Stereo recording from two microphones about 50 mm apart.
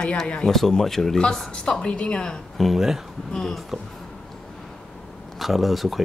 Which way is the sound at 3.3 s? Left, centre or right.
Centre.